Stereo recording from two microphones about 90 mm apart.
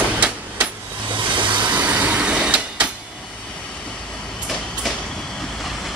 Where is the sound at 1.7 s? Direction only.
20° right (ahead or behind).